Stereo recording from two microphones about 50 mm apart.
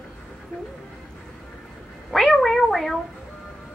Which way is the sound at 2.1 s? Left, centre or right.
Centre.